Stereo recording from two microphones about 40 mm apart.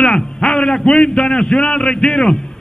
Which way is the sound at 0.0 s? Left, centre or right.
Centre.